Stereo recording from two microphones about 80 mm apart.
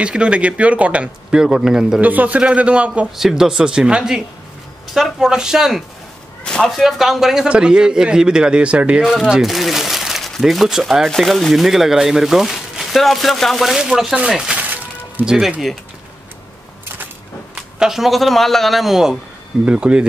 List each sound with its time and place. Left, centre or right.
0.0 s a man's voice: centre
2.0 s a man's voice: centre
6.4 s a man's voice: centre
9.0 s a man's voice: centre
14.6 s music: right
15.2 s speech: centre
17.7 s a man's voice: centre